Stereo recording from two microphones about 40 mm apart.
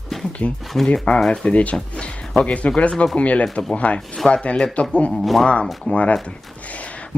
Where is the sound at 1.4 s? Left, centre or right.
Left.